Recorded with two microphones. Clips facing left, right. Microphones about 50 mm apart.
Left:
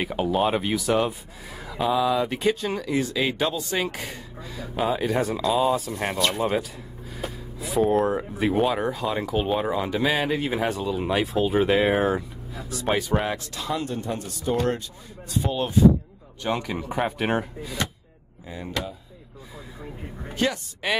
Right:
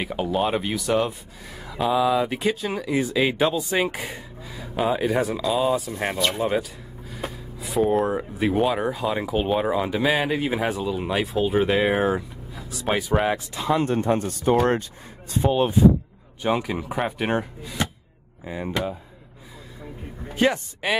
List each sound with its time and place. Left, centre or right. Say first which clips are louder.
0.0 s speech: left 1 dB; centre
13.3 s speech: right 5 dB; centre
13.7 s speech: right 10 dB; right
16.4 s speech: right 3 dB; centre
18.4 s speech: right 4 dB; right